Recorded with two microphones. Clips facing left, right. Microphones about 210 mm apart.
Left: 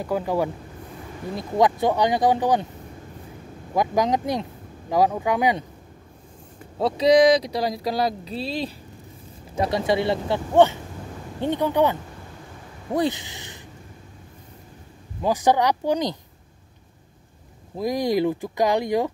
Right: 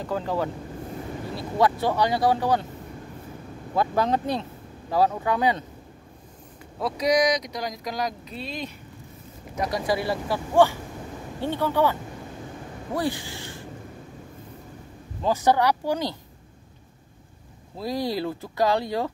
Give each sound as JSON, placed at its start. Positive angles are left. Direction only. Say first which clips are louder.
{"t": 0.0, "sound": "speech", "louder": "left 3 dB", "side_deg": 10}
{"t": 3.7, "sound": "speech", "louder": "left 2 dB", "side_deg": 15}
{"t": 6.8, "sound": "speech", "louder": "left 6 dB", "side_deg": 30}
{"t": 15.2, "sound": "speech", "louder": "left 1 dB", "side_deg": 15}
{"t": 17.7, "sound": "speech", "louder": "left 5 dB", "side_deg": 15}